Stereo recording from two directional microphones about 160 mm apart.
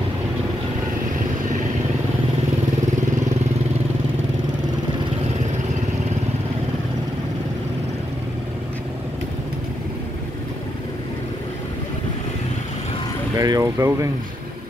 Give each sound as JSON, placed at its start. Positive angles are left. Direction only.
{"t": 13.4, "sound": "speech", "side_deg": -20}